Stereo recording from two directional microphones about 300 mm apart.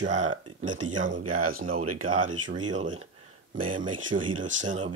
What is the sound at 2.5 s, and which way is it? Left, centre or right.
A man's voice, centre.